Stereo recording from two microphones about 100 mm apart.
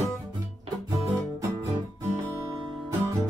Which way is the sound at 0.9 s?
30° right (ahead or behind).